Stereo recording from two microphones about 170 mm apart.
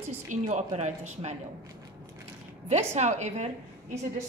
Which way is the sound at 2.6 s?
40° right (ahead or behind).